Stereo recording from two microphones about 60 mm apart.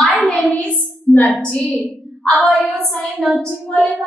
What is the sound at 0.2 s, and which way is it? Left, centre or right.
Hands, centre.